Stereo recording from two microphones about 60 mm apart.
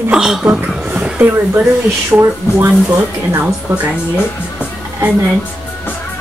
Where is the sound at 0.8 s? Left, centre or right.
Centre.